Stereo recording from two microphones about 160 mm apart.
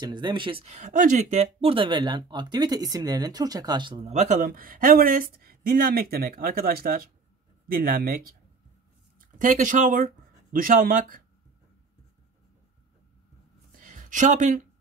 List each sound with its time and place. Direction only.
0.0 s speech: 30° right (ahead or behind)
0.7 s speech: 50° right (ahead or behind); by 4.1 s 30° right (ahead or behind)
4.1 s speech: 45° right (ahead or behind)
4.5 s speech: 60° right (ahead or behind)
9.4 s speech: 55° right (ahead or behind)
13.7 s a sound: 55° right (ahead or behind)